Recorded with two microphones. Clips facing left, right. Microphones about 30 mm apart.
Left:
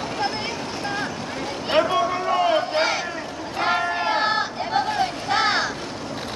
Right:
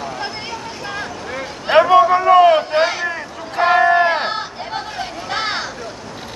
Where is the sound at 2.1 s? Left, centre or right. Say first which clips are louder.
Right 10 dB; right.